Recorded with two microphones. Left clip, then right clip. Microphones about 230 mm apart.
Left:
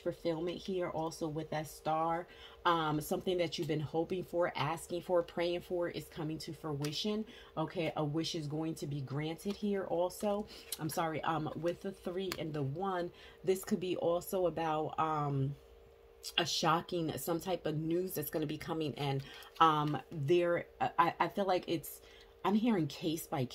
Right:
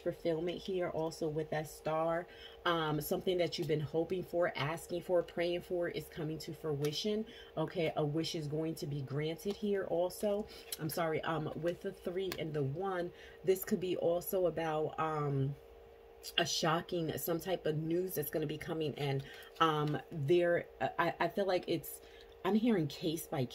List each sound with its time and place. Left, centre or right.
0.0 s speech: centre